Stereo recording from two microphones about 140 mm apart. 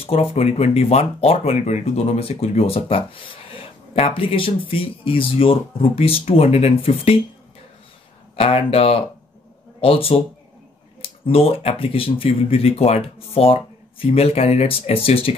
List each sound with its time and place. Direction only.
0.0 s speech: 45° left (ahead or behind)
8.4 s speech: 45° left (ahead or behind)